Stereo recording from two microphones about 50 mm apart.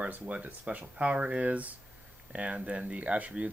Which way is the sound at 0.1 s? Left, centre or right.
Right.